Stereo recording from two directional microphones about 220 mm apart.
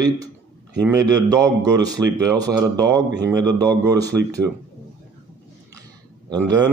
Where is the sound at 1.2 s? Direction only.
15° right (ahead or behind).